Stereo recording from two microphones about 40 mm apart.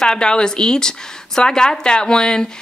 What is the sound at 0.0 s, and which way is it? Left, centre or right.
A woman's voice, centre.